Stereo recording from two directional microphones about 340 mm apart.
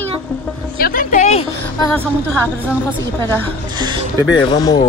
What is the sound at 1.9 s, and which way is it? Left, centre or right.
Speech, centre.